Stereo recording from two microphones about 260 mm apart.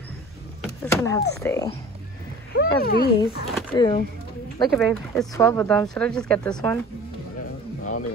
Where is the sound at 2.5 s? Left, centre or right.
Left.